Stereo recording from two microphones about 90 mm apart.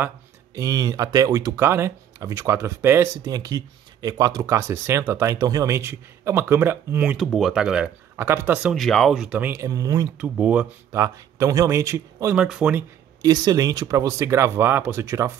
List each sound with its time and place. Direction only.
0.6 s speech: 40° right (ahead or behind)
3.3 s speech: 45° right (ahead or behind)
5.8 s speech: 25° right (ahead or behind)
7.3 s speech: 5° right (ahead or behind)
8.2 s speech: 25° right (ahead or behind)
8.7 s speech: centre (ahead or behind)
9.3 s speech: 20° right (ahead or behind)
9.6 s speech: 40° right (ahead or behind)
10.1 s speech: 15° right (ahead or behind)
10.9 s speech: 35° right (ahead or behind)
12.4 s speech: 10° right (ahead or behind)
13.2 s speech: 40° right (ahead or behind)